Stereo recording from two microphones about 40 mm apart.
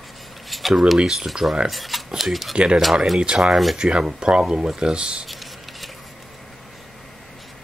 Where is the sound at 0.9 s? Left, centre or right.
Centre.